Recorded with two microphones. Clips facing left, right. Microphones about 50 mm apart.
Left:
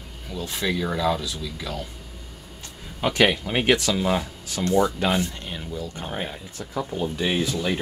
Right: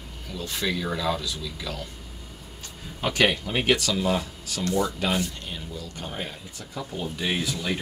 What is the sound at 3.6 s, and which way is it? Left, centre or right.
Speech, left.